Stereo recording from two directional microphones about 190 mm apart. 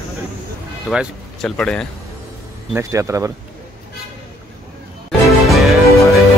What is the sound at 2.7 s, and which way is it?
Speech, 15° right (ahead or behind).